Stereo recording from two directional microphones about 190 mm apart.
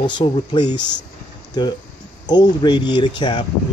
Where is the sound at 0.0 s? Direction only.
25° left (ahead or behind).